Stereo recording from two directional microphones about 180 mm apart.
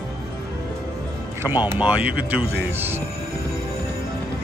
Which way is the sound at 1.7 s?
10° right (ahead or behind).